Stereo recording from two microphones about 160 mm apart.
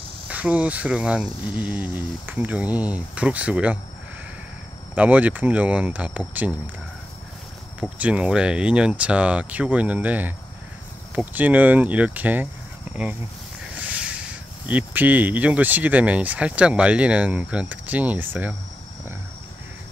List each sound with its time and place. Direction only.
0.3 s speech: 10° right (ahead or behind)
4.9 s speech: 10° right (ahead or behind)
8.0 s speech: 5° right (ahead or behind)
13.7 s a sound: 10° right (ahead or behind)
14.7 s speech: 10° right (ahead or behind)